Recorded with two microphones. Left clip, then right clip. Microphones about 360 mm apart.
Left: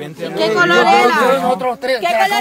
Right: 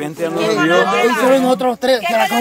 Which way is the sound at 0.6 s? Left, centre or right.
Centre.